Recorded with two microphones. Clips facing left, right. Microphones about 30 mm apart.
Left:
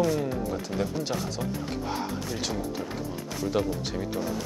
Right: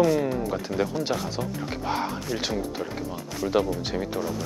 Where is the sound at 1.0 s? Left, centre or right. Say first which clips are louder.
Right 3 dB; right.